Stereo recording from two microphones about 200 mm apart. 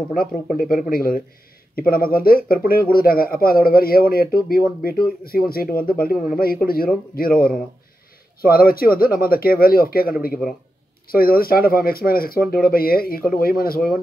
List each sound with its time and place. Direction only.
0.2 s speech: 45° left (ahead or behind)